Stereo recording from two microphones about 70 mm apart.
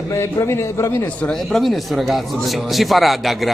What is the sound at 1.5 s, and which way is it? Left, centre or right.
Speech, centre.